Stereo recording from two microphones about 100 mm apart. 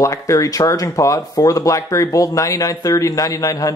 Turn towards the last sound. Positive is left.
turn(degrees=35)  # may be behind; listen again after turning